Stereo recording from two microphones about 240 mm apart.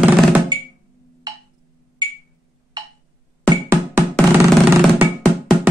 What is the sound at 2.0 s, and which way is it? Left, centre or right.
Wood block, centre.